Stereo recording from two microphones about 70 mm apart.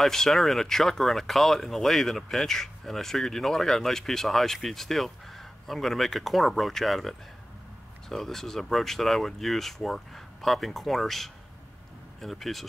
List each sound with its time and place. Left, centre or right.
0.0 s speech: centre